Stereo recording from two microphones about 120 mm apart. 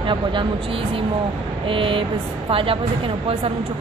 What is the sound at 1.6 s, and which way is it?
Speech, 45° right (ahead or behind).